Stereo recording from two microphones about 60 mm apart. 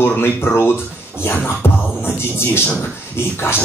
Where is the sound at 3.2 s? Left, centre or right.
Left.